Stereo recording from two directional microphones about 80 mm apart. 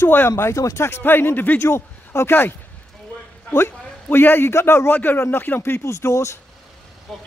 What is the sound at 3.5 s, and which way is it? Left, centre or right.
A man's voice, left.